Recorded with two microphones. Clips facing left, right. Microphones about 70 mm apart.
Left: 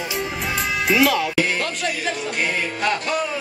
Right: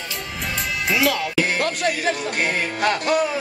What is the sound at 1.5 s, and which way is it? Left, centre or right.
Speech, right.